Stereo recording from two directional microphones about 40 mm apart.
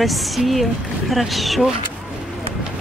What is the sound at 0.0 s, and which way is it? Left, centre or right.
Speech, centre.